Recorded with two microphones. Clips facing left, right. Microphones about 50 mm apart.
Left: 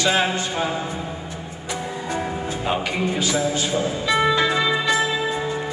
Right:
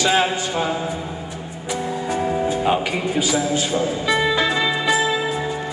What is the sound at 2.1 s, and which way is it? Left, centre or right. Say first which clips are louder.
Music: right 6 dB; centre.